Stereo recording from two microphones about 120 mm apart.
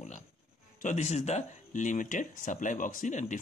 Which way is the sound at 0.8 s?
70° left (ahead or behind).